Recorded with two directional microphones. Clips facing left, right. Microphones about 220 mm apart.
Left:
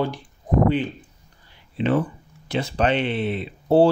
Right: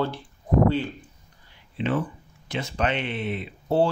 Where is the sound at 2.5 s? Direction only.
35° left (ahead or behind).